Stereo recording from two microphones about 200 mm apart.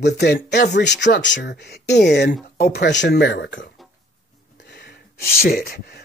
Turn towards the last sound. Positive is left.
turn(degrees=50)  # may be behind; listen again after turning